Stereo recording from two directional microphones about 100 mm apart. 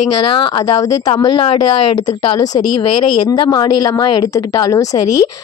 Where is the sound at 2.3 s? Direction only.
40° left (ahead or behind).